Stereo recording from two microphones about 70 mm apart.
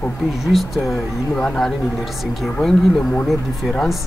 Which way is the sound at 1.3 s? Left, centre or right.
Centre.